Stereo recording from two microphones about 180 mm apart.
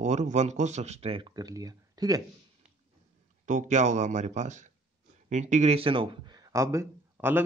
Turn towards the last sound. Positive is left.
turn(degrees=-15)  # may be behind; listen again after turning